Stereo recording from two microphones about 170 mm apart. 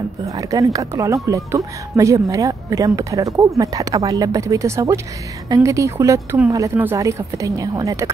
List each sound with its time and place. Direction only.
0.2 s speech: 20° right (ahead or behind)